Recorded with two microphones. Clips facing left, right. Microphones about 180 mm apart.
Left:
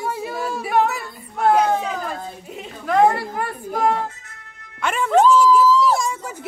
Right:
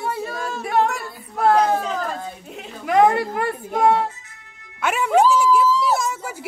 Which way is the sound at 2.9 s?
15° right (ahead or behind).